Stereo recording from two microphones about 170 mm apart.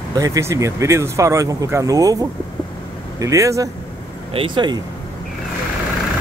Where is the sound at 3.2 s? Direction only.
20° right (ahead or behind).